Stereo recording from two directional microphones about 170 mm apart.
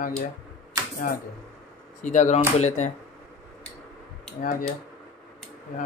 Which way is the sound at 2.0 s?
45° left (ahead or behind).